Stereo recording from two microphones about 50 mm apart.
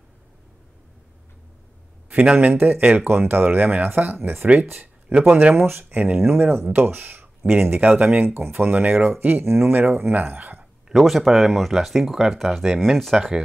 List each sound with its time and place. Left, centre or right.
2.0 s speech: right
4.2 s speech: right
11.0 s speech: centre